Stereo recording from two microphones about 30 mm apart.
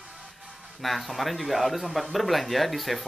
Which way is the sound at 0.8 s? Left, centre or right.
Centre.